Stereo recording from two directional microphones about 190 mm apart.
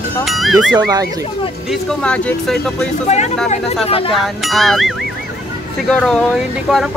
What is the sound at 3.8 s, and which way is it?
Speech, 30° left (ahead or behind).